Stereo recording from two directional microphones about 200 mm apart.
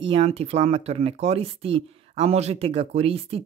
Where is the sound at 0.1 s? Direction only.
30° right (ahead or behind).